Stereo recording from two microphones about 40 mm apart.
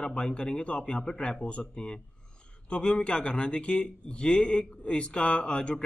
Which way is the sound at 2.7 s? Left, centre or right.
Left.